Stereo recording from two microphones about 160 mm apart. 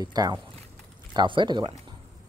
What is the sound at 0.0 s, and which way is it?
Speech, 25° right (ahead or behind).